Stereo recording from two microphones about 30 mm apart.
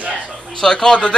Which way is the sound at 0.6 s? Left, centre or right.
Left.